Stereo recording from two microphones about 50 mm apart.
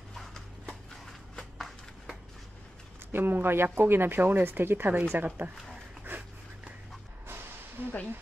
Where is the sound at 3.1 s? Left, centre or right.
Right.